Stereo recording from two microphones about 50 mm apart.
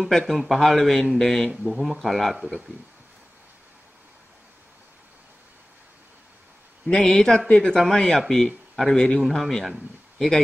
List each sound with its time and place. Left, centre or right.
0.1 s speech: centre
1.5 s speech: centre
6.9 s speech: centre